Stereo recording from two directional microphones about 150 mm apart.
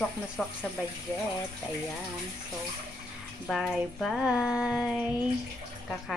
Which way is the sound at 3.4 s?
Centre (ahead or behind).